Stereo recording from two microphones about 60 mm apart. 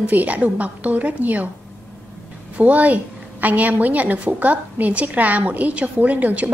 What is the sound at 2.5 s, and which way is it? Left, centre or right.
A woman's voice, right.